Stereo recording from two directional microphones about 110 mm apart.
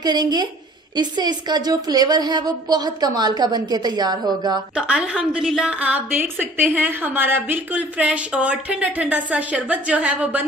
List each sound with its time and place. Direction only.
0.0 s a woman's voice: 40° right (ahead or behind)
4.7 s a woman's voice: 10° right (ahead or behind)